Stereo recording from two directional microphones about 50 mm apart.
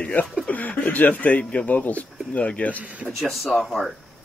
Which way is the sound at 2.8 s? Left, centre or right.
Right.